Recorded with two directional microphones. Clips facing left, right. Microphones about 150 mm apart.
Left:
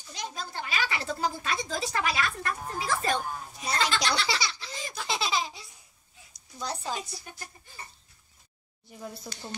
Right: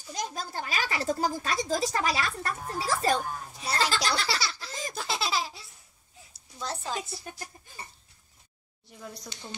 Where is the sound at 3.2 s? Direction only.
5° right (ahead or behind).